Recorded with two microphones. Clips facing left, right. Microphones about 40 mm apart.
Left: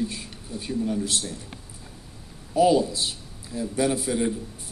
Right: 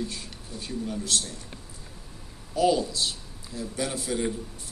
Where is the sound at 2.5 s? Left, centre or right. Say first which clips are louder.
Left 4 dB; centre.